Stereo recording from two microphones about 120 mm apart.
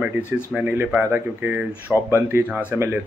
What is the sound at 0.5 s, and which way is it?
A man's voice, 15° right (ahead or behind).